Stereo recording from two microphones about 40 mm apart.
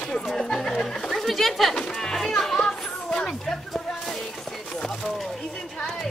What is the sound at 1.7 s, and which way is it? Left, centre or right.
Children playing, left.